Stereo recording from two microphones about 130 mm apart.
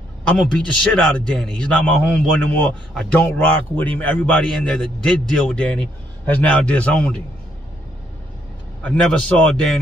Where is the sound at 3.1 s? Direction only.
15° left (ahead or behind).